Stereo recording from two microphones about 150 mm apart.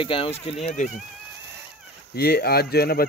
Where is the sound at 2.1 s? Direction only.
90° left.